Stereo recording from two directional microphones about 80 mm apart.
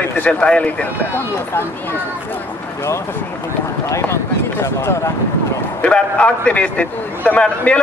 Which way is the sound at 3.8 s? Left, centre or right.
Left.